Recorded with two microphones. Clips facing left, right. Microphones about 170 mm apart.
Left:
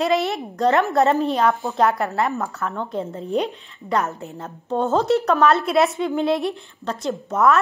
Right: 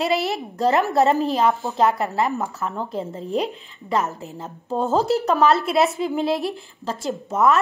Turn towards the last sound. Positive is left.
turn(degrees=0)  # may be behind; listen again after turning